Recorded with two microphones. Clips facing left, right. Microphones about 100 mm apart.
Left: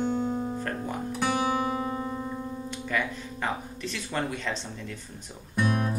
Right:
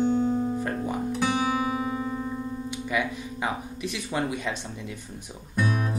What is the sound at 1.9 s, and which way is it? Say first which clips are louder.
Music: right 2 dB; 35° left (ahead or behind).